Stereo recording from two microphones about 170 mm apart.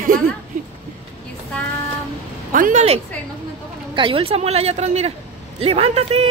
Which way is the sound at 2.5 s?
50° right (ahead or behind).